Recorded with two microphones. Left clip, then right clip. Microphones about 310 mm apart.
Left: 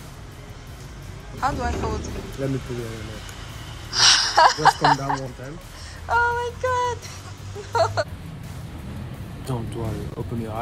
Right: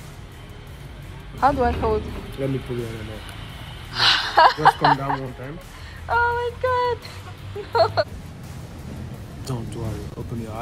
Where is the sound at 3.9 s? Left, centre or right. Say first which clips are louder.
Left 1 dB; centre.